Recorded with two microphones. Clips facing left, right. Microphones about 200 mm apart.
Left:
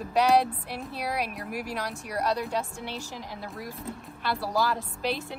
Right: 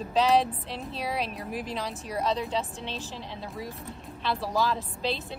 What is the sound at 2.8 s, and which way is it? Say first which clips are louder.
A woman's voice: even; 15° left (ahead or behind).